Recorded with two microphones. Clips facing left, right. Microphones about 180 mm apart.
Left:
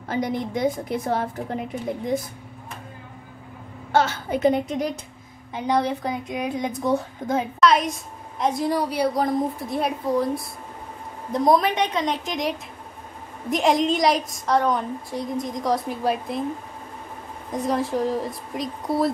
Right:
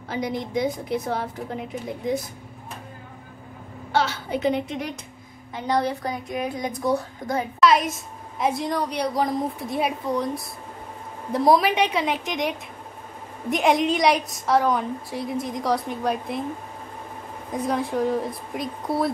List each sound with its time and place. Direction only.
0.1 s a woman's voice: 50° left (ahead or behind)
3.9 s a woman's voice: 50° left (ahead or behind)
5.5 s a woman's voice: 20° left (ahead or behind)
7.6 s a woman's voice: centre (ahead or behind)
8.6 s a woman's voice: 5° left (ahead or behind)
17.5 s a woman's voice: centre (ahead or behind)